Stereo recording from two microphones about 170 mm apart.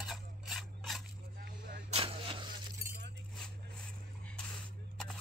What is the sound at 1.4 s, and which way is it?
Vehicle, 70° right (ahead or behind).